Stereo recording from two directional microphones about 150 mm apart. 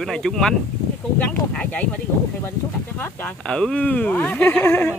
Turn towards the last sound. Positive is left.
turn(degrees=10)  # may be behind; listen again after turning